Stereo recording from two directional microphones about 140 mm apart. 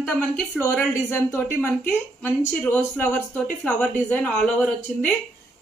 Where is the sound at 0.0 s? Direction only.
10° left (ahead or behind).